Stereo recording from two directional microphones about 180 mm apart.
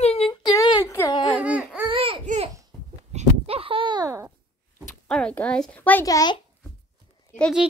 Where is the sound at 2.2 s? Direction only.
40° right (ahead or behind).